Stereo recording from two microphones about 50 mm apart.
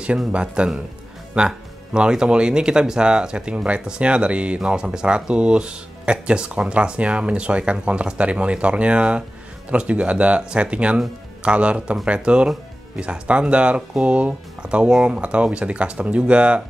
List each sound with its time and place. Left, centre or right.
0.3 s speech: centre